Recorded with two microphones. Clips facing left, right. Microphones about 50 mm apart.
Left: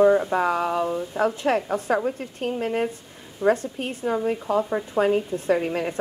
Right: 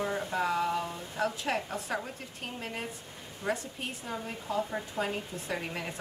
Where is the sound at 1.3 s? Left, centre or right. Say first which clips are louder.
Left 11 dB; left.